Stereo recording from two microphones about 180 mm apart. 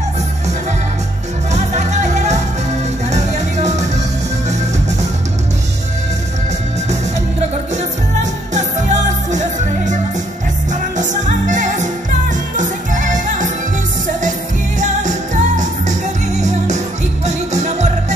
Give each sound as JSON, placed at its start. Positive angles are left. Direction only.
{"t": 1.5, "sound": "music", "side_deg": -40}
{"t": 7.7, "sound": "music", "side_deg": -40}
{"t": 10.7, "sound": "music", "side_deg": -45}
{"t": 14.8, "sound": "music", "side_deg": -40}